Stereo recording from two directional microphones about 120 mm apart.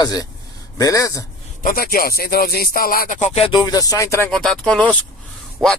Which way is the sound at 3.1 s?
65° left (ahead or behind).